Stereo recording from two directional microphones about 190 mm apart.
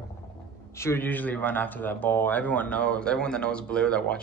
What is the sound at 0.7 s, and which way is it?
Speech, 15° left (ahead or behind).